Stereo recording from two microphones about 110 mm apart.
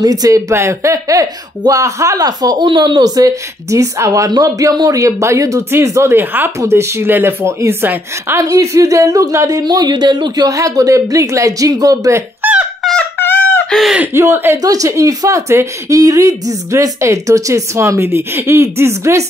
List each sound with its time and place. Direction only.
0.0 s speech: 35° right (ahead or behind)
12.4 s a sound: 15° right (ahead or behind)
13.2 s fowl: 20° left (ahead or behind)
13.7 s speech: centre (ahead or behind)
14.1 s speech: 20° right (ahead or behind)
14.6 s speech: 30° right (ahead or behind)